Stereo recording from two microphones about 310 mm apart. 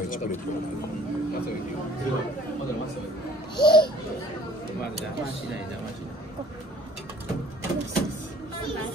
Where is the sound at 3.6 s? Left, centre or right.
Centre.